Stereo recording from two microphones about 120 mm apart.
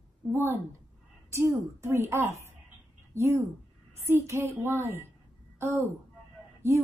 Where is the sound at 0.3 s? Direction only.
20° right (ahead or behind).